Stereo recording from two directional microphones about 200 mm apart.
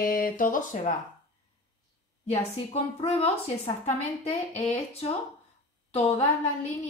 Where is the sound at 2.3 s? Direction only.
30° left (ahead or behind).